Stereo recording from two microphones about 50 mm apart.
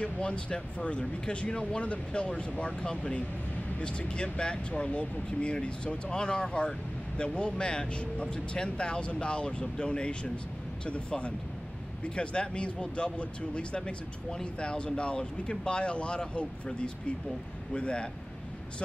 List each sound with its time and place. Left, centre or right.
0.0 s speech: left